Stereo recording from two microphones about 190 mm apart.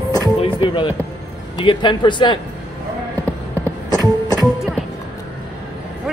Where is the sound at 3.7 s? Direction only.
20° left (ahead or behind).